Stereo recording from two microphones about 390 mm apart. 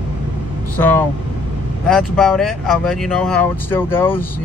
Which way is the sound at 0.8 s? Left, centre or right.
Centre.